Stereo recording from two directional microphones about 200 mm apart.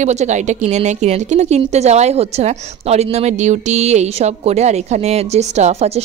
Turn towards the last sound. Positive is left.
turn(degrees=-35)  # may be behind; listen again after turning